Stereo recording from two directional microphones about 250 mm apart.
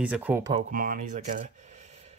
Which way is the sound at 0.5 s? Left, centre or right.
Right.